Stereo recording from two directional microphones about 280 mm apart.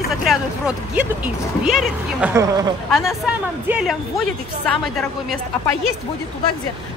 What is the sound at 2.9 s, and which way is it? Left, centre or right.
A woman's voice, centre.